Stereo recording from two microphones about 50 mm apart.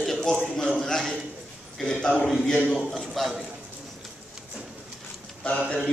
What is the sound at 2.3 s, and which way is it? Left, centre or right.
A man's voice, centre.